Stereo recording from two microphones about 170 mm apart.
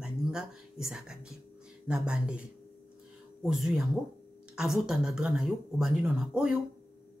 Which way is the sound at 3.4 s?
5° right (ahead or behind).